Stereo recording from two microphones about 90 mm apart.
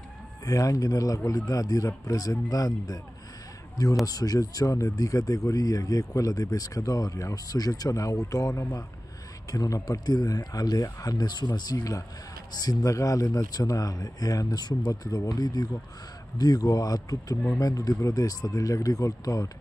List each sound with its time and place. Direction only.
0.5 s speech: 40° left (ahead or behind)
4.0 s speech: 45° left (ahead or behind)